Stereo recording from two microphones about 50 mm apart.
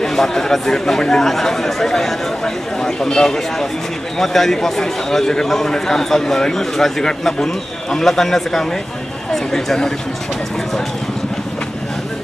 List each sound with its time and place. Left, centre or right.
0.0 s a man's voice: centre